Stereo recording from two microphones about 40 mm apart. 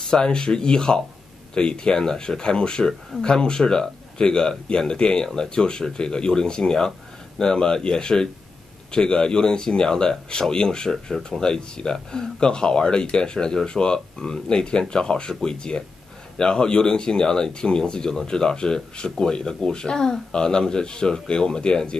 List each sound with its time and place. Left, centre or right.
0.0 s speech: centre